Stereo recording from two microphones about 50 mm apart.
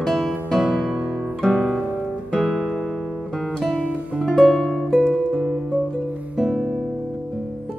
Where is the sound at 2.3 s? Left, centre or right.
Centre.